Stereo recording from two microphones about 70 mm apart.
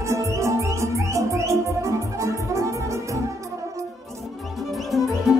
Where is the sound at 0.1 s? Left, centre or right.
Right.